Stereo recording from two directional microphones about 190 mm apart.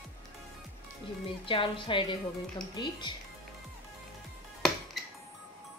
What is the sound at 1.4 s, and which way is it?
A woman's voice, 25° left (ahead or behind).